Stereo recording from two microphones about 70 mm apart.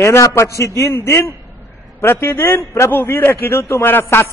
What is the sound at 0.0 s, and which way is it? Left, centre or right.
A man's voice, left.